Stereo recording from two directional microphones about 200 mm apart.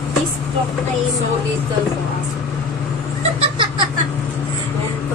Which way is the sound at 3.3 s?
25° right (ahead or behind).